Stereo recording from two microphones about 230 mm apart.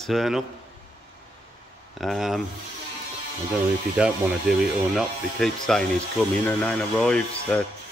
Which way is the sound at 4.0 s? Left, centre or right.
Centre.